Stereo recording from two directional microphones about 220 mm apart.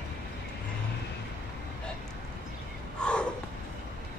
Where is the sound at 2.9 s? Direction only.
5° left (ahead or behind).